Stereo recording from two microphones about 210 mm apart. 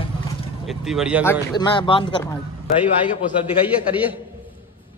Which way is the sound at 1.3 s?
20° left (ahead or behind).